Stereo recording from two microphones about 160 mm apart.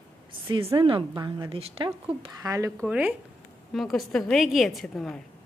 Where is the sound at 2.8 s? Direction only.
10° right (ahead or behind).